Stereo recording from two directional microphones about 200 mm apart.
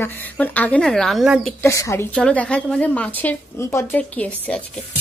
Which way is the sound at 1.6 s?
15° left (ahead or behind).